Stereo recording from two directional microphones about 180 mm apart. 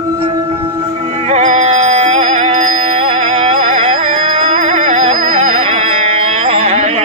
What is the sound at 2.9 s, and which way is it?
Carnatic music, 40° right (ahead or behind).